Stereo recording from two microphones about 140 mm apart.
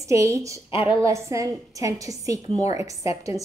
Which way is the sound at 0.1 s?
20° right (ahead or behind).